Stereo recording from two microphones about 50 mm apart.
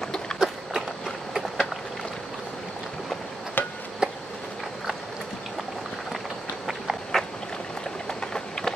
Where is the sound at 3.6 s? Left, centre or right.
Left.